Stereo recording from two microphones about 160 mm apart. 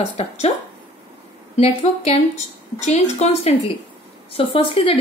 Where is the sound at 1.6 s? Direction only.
45° left (ahead or behind).